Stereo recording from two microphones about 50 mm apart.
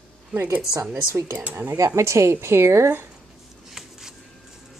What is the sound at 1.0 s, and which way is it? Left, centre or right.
Speech, right.